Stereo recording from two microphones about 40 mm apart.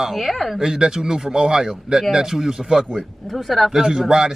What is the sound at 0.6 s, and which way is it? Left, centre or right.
A man's voice, centre.